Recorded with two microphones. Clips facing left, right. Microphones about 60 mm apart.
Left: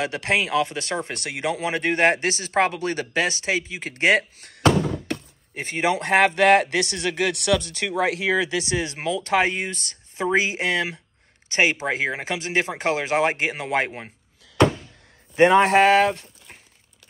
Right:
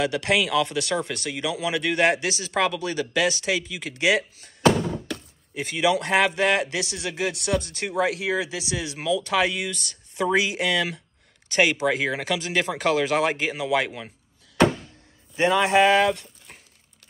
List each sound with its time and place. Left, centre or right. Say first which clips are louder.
0.0 s speech: right 1 dB; left
7.6 s speech: left 1 dB; left
15.3 s speech: left 4 dB; left